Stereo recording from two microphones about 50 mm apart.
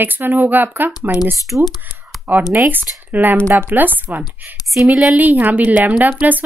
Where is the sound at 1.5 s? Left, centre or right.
Right.